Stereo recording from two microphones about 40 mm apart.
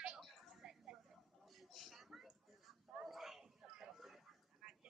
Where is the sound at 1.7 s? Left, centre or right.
Centre.